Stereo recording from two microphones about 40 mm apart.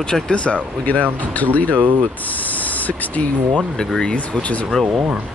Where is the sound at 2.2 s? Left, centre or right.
Left.